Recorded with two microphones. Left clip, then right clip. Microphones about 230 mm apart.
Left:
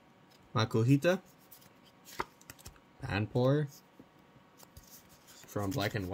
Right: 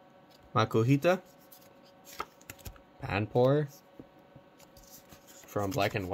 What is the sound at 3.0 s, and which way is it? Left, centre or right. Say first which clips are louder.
Speech: right 5 dB; left.